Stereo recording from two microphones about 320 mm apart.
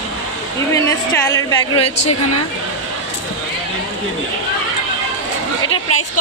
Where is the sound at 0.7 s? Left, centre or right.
Centre.